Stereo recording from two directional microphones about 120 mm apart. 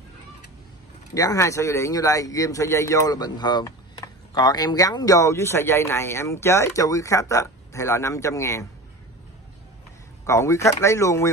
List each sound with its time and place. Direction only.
1.1 s speech: 30° left (ahead or behind)
10.2 s speech: 25° left (ahead or behind)